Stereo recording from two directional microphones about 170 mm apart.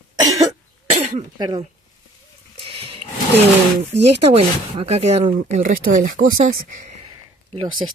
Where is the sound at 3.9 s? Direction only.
35° right (ahead or behind).